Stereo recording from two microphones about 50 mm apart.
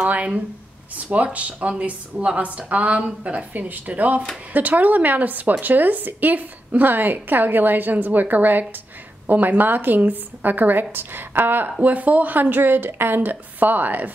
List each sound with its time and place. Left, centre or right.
0.0 s a woman's voice: right
11.8 s a woman's voice: right